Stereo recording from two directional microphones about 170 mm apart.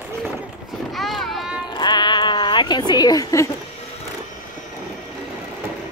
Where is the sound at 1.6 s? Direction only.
25° left (ahead or behind).